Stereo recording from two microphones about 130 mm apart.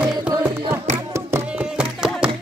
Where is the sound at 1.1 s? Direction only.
20° right (ahead or behind).